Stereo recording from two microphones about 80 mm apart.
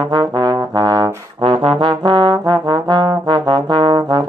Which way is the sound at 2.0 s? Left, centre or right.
Right.